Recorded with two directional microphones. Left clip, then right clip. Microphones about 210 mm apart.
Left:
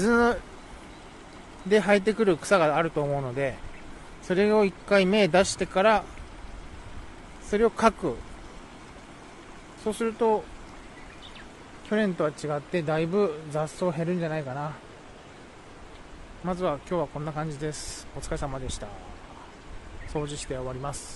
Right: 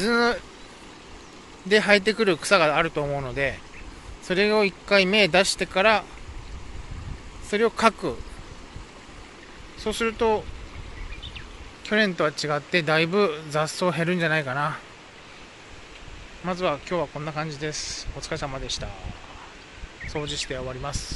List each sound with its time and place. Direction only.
0.0 s speech: 20° left (ahead or behind)
1.7 s speech: 10° left (ahead or behind)
7.5 s speech: 10° left (ahead or behind)
9.8 s speech: 5° left (ahead or behind)
11.8 s speech: centre (ahead or behind)
16.4 s speech: 5° left (ahead or behind)
20.2 s speech: 5° left (ahead or behind)